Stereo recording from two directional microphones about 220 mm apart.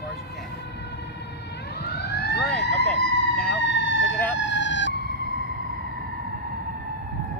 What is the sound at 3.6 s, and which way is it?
Emergency vehicle, 55° left (ahead or behind).